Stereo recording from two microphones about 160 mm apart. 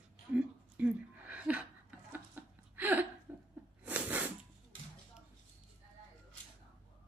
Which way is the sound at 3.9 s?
10° right (ahead or behind).